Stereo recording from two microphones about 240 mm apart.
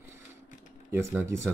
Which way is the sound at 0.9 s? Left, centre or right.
Centre.